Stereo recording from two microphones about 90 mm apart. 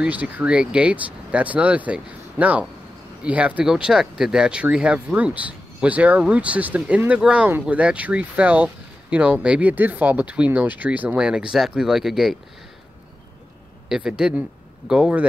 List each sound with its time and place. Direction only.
0.0 s speech: 15° right (ahead or behind)
13.8 s speech: 5° right (ahead or behind)